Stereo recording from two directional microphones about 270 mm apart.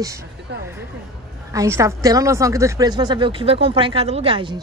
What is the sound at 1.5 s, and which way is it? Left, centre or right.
A woman's voice, centre.